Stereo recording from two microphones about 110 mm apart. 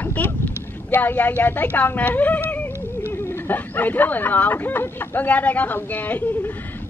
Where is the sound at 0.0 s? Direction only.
15° left (ahead or behind).